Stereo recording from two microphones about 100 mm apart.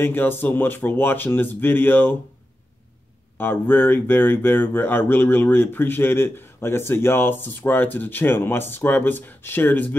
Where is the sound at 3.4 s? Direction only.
20° left (ahead or behind).